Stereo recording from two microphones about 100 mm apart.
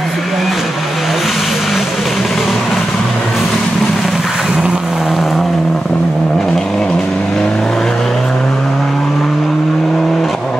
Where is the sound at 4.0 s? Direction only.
5° right (ahead or behind).